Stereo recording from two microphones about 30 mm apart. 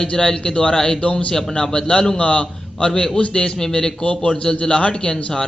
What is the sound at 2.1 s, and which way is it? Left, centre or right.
A man's voice, left.